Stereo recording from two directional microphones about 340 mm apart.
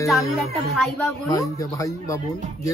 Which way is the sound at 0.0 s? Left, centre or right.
Centre.